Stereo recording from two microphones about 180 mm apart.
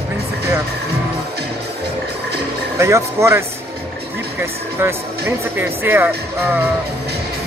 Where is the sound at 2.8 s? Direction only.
15° right (ahead or behind).